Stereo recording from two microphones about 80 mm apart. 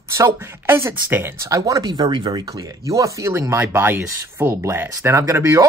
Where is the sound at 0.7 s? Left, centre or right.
Right.